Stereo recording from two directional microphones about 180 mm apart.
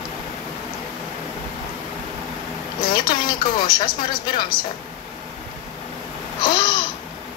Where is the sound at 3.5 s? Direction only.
50° left (ahead or behind).